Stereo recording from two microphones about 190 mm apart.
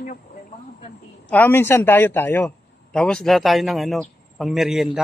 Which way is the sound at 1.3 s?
10° left (ahead or behind).